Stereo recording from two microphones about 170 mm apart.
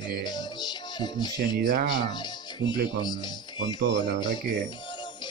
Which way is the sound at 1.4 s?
25° left (ahead or behind).